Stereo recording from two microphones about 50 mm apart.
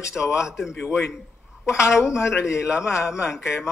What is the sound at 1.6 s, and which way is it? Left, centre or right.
Speech, left.